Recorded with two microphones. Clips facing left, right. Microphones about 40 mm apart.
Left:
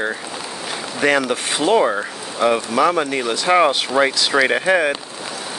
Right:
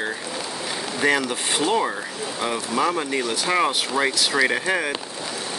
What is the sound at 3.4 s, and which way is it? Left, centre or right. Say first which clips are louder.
Speech: left 8 dB; left.